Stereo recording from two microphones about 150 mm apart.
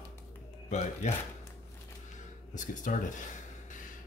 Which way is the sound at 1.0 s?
50° left (ahead or behind).